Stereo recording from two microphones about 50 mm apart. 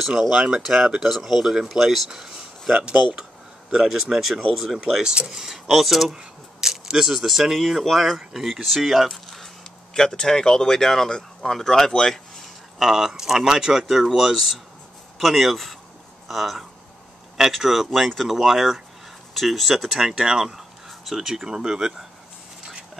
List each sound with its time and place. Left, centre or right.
0.2 s speech: centre
2.7 s speech: right
3.7 s speech: centre
9.9 s speech: centre
12.7 s speech: centre